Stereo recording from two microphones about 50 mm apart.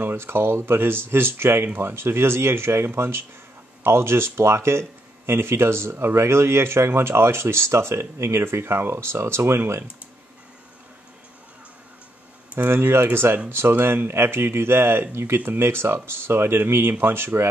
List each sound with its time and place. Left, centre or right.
0.0 s speech: right
12.5 s speech: right